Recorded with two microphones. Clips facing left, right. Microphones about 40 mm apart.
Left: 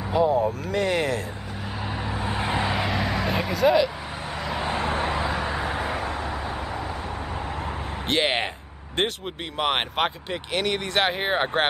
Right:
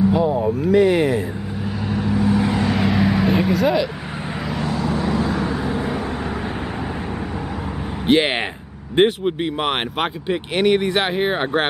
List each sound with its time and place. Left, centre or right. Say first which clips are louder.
0.1 s a sound: right 2 dB; centre
0.5 s speech: right 9 dB; centre
1.9 s vehicle: right 9 dB; centre
2.1 s vehicle: right 8 dB; left
2.6 s vehicle: right 6 dB; centre
4.6 s vehicle: right 3 dB; left
5.1 s vehicle: right 5 dB; centre
8.1 s speech: right 6 dB; centre
11.1 s speech: right 4 dB; centre